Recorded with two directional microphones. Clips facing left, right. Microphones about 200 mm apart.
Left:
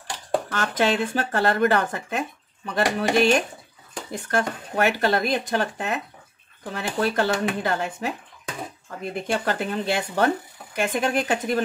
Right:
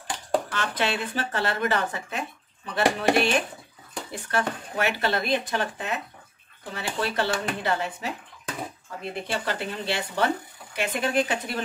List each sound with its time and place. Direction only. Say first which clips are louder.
0.5 s speech: left 5 dB; 45° left (ahead or behind)
9.3 s speech: left 6 dB; 50° left (ahead or behind)